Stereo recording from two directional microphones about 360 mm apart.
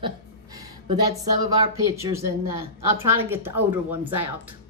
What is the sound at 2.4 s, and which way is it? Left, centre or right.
Speech, right.